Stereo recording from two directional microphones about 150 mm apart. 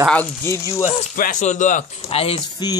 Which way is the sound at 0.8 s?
60° left (ahead or behind).